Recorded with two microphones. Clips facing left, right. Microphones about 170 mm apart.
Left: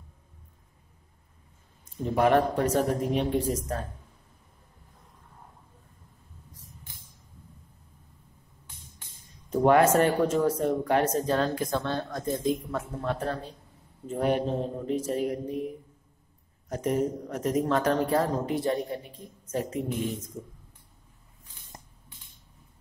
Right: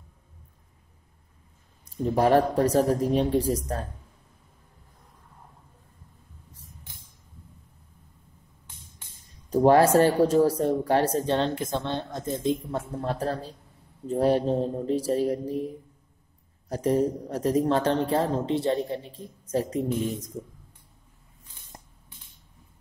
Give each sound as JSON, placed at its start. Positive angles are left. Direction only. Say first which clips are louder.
{"t": 2.1, "sound": "speech", "louder": "right 2 dB", "side_deg": -35}
{"t": 9.5, "sound": "speech", "louder": "right 2 dB", "side_deg": -35}